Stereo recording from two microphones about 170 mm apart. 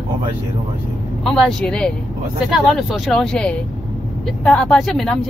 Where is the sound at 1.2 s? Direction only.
5° left (ahead or behind).